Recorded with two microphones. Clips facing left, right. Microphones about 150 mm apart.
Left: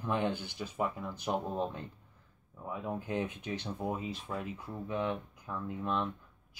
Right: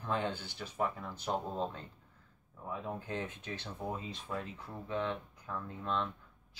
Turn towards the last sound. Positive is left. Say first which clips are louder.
# left 2 dB
turn(degrees=15)  # may be behind; listen again after turning